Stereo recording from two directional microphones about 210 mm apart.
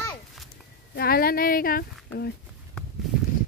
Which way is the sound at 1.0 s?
45° left (ahead or behind).